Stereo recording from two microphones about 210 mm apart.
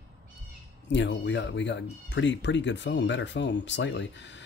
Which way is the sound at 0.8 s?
60° left (ahead or behind).